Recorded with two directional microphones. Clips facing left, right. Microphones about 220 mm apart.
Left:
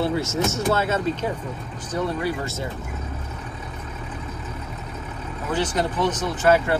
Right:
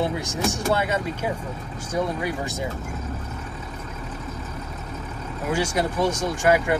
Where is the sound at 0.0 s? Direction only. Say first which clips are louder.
Left 2 dB; 15° right (ahead or behind).